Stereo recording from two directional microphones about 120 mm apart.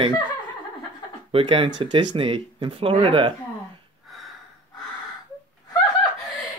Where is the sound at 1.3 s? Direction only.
50° right (ahead or behind).